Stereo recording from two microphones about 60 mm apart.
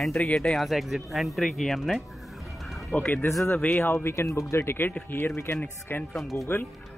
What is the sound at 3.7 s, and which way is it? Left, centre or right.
Speech, left.